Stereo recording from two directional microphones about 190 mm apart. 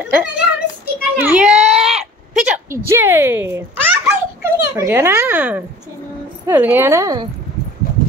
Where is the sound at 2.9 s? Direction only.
10° right (ahead or behind).